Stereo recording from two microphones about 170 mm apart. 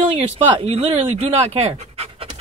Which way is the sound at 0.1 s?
35° right (ahead or behind).